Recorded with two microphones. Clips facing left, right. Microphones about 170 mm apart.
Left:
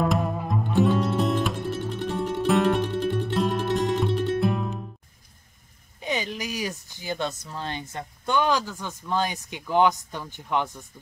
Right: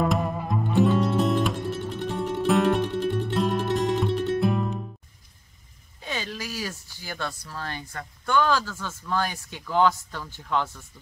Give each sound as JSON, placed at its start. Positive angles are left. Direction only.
{"t": 0.0, "sound": "music", "side_deg": 0}
{"t": 5.9, "sound": "speech", "side_deg": 20}